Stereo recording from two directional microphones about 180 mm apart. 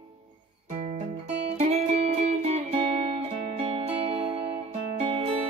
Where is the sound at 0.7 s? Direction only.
40° right (ahead or behind).